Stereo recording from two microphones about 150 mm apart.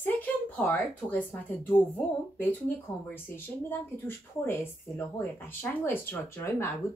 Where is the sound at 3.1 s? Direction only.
15° left (ahead or behind).